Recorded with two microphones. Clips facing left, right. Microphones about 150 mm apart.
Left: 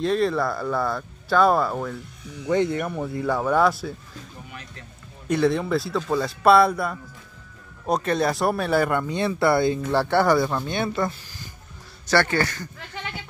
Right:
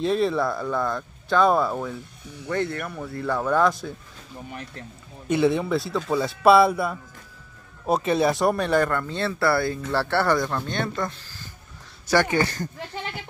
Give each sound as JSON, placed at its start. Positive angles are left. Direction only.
{"t": 0.0, "sound": "speech", "side_deg": 0}
{"t": 2.4, "sound": "speech", "side_deg": 20}
{"t": 5.3, "sound": "speech", "side_deg": -5}
{"t": 12.1, "sound": "speech", "side_deg": -15}